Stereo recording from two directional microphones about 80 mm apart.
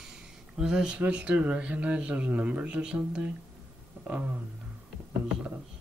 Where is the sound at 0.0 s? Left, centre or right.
Centre.